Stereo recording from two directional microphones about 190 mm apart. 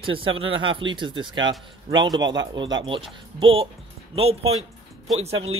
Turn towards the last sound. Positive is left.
turn(degrees=-30)  # may be behind; listen again after turning